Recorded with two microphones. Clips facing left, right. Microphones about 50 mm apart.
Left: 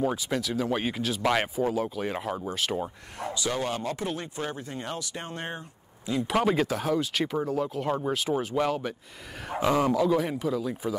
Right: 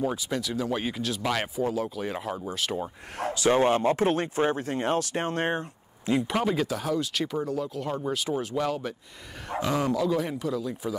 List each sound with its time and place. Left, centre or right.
0.0 s speech: centre
3.2 s speech: right
4.9 s speech: right
6.4 s speech: centre